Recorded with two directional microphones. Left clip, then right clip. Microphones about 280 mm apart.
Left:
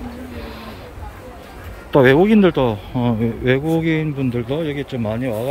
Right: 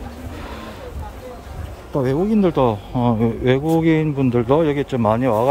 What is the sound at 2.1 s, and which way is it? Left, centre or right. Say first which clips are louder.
Speech: left 4 dB; centre.